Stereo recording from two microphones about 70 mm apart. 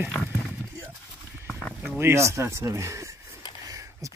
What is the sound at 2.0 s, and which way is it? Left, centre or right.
Speech, right.